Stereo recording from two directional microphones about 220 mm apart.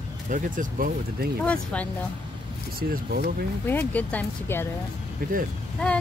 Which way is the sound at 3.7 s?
10° left (ahead or behind).